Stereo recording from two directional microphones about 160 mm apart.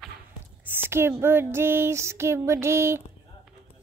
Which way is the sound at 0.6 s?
15° right (ahead or behind).